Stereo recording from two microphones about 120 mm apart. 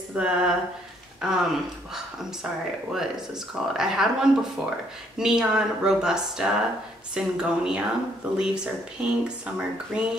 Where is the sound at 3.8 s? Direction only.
5° right (ahead or behind).